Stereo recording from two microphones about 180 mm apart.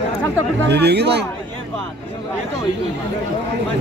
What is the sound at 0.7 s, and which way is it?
Speech, 65° right (ahead or behind).